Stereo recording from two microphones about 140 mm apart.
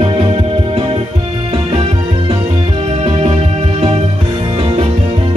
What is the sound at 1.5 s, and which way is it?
Music, 45° right (ahead or behind).